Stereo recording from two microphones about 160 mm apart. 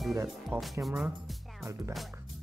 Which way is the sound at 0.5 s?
10° right (ahead or behind).